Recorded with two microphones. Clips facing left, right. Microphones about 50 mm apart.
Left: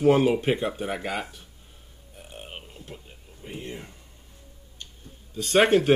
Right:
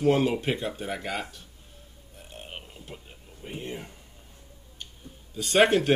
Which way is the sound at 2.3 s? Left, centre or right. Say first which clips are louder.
Left 1 dB; centre.